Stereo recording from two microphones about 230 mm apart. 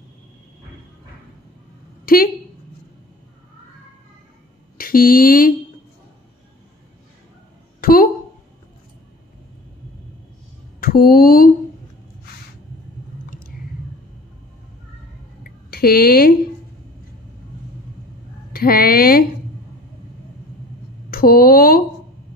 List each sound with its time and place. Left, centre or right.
2.0 s a woman's voice: left
4.7 s speech: left
7.8 s a sound: left
10.8 s speech: left
15.4 s a sound: left
18.5 s speech: left
21.1 s speech: left